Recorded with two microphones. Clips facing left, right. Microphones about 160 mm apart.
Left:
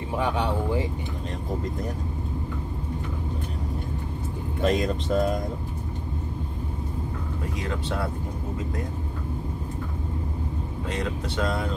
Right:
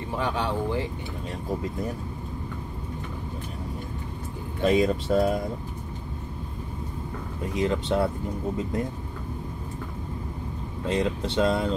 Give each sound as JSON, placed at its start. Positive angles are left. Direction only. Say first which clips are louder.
{"t": 0.2, "sound": "speech", "louder": "left 1 dB", "side_deg": 15}
{"t": 4.6, "sound": "speech", "louder": "right 3 dB", "side_deg": -5}
{"t": 7.5, "sound": "speech", "louder": "right 8 dB", "side_deg": -25}
{"t": 10.9, "sound": "speech", "louder": "right 5 dB", "side_deg": -25}